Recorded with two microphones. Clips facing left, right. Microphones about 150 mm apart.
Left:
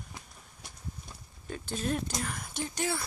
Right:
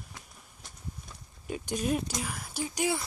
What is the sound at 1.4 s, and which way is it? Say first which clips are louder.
Speech: right 3 dB; 15° right (ahead or behind).